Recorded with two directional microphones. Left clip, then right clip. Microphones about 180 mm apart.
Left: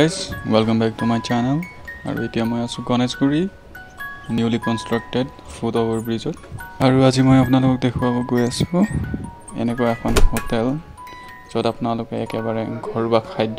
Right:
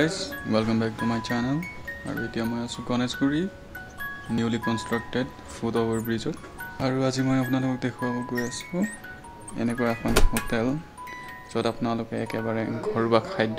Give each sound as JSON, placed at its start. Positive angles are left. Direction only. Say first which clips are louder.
{"t": 0.0, "sound": "speech", "louder": "left 7 dB", "side_deg": 35}
{"t": 6.8, "sound": "speech", "louder": "left 10 dB", "side_deg": 40}
{"t": 9.6, "sound": "speech", "louder": "left 6 dB", "side_deg": 25}
{"t": 10.0, "sound": "speech", "louder": "left 4 dB", "side_deg": 0}
{"t": 11.5, "sound": "speech", "louder": "left 6 dB", "side_deg": 20}